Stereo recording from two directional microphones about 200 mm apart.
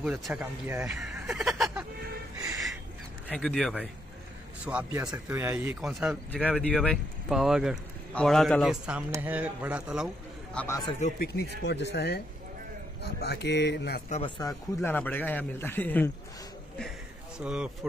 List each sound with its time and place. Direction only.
0.0 s speech: 5° right (ahead or behind)
3.3 s speech: 5° left (ahead or behind)
6.3 s speech: 5° left (ahead or behind)
10.5 s a man's voice: 5° left (ahead or behind)
10.9 s speech: 35° left (ahead or behind)
11.6 s speech: 60° left (ahead or behind)
14.5 s a man's voice: 10° left (ahead or behind)
17.4 s speech: 5° right (ahead or behind)